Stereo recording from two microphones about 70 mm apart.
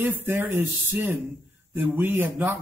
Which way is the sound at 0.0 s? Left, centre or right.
Right.